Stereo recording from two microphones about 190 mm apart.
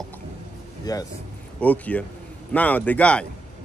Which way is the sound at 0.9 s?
20° left (ahead or behind).